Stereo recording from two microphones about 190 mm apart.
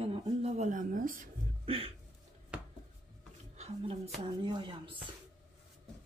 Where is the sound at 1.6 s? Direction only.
30° right (ahead or behind).